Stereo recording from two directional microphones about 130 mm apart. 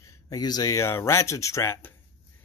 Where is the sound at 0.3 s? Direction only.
30° left (ahead or behind).